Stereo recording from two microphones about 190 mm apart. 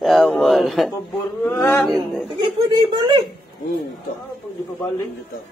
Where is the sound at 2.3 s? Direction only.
25° right (ahead or behind).